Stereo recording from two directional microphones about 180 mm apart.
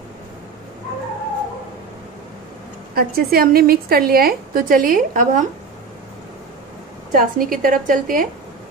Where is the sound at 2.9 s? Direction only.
55° right (ahead or behind).